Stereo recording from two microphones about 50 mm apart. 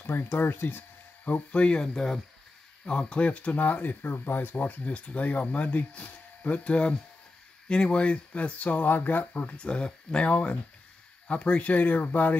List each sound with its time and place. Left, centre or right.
0.0 s speech: left
1.5 s speech: left
9.6 s speech: centre; by 12.4 s left